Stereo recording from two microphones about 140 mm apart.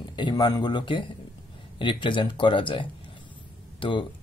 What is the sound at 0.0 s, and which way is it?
Speech, 30° left (ahead or behind).